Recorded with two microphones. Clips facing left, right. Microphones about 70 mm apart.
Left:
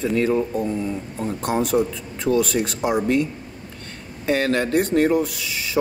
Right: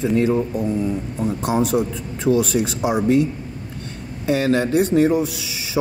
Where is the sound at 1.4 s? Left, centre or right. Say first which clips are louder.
Even; left.